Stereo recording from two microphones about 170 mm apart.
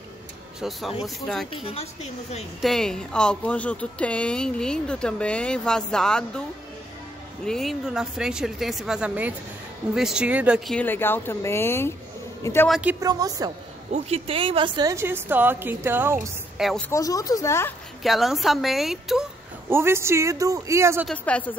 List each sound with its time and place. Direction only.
0.6 s a woman's voice: centre (ahead or behind)
1.5 s a woman's voice: 35° left (ahead or behind)
2.6 s a woman's voice: 5° left (ahead or behind)
7.4 s a woman's voice: centre (ahead or behind)
10.7 s speech: 10° left (ahead or behind)
12.6 s a woman's voice: centre (ahead or behind)
13.0 s a woman's voice: 20° right (ahead or behind)
13.9 s a woman's voice: 35° right (ahead or behind); by 16.8 s centre (ahead or behind)
16.9 s speech: 20° left (ahead or behind)
18.0 s a woman's voice: centre (ahead or behind)
19.7 s a woman's voice: 15° right (ahead or behind)
21.1 s speech: 10° left (ahead or behind)